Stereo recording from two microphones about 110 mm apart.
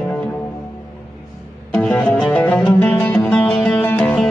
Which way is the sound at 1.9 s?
Centre (ahead or behind).